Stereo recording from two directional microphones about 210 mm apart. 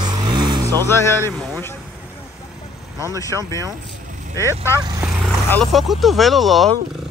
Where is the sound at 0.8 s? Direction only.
10° left (ahead or behind).